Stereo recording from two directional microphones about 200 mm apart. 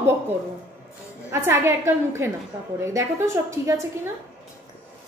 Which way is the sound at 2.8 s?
15° right (ahead or behind).